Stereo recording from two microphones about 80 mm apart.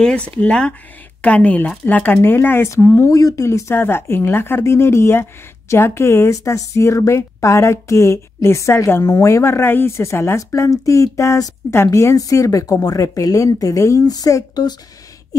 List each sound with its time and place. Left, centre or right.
0.4 s speech: centre; by 14.8 s left